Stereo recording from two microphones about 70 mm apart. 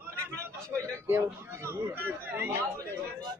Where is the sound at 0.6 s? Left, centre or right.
Right.